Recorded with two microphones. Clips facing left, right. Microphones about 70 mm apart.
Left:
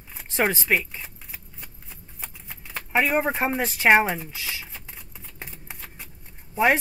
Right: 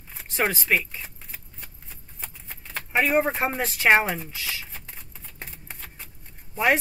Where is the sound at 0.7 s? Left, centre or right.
Centre.